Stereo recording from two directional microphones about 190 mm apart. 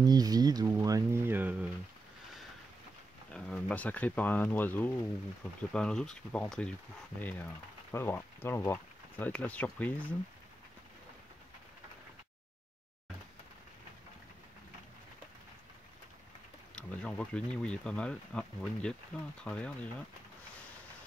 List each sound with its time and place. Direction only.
0.0 s speech: 20° right (ahead or behind)
3.3 s speech: 5° left (ahead or behind)
16.7 s speech: 5° left (ahead or behind)